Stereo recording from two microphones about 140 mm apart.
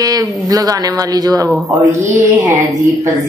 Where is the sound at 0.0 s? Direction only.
25° right (ahead or behind).